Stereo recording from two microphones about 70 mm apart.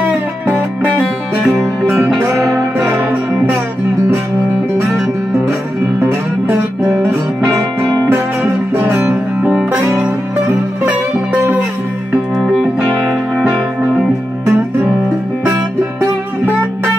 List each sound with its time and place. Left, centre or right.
2.5 s music: centre
5.9 s music: right
8.7 s music: right
9.0 s music: centre
9.7 s music: right
11.3 s music: right
12.4 s music: centre